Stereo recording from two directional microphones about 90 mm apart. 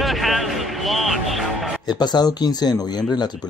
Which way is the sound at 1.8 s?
50° left (ahead or behind).